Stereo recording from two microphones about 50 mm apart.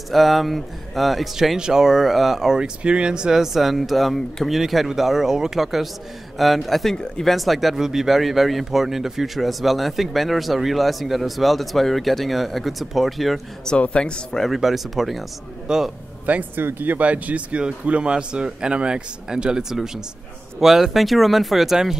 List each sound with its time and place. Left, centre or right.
0.1 s speech: centre
7.3 s speech: centre
13.7 s speech: left
14.4 s speech: centre
15.7 s speech: centre
16.5 s speech: right
17.0 s speech: right; by 21.7 s centre